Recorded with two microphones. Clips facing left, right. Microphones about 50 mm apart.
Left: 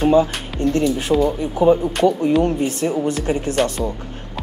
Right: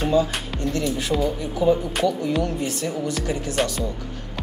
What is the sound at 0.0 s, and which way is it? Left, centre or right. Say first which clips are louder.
Speech: left 5 dB; left.